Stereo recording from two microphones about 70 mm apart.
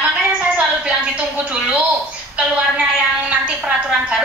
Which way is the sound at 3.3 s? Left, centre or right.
Right.